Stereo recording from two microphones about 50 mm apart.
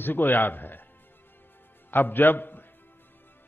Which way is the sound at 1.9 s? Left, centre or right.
Left.